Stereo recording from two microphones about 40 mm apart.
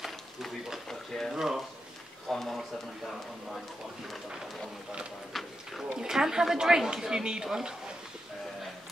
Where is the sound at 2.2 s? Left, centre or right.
Centre.